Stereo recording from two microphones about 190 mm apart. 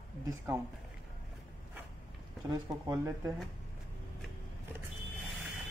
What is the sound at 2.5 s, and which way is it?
Speech, 20° right (ahead or behind).